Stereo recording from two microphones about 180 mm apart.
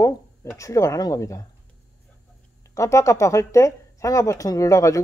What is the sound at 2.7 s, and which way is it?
Speech, 15° left (ahead or behind).